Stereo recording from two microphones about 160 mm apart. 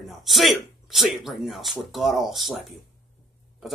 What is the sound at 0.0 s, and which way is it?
Speech, centre (ahead or behind).